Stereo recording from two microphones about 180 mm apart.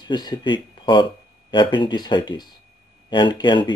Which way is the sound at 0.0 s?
25° left (ahead or behind).